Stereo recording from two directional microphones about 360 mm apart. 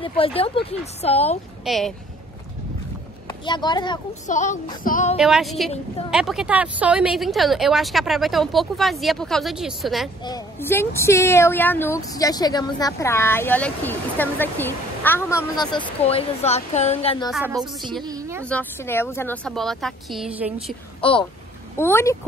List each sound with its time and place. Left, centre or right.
0.0 s speech: centre
1.6 s speech: centre
3.3 s speech: centre
5.1 s speech: centre
17.3 s speech: centre
18.0 s a sound: centre
18.4 s speech: centre
21.0 s speech: centre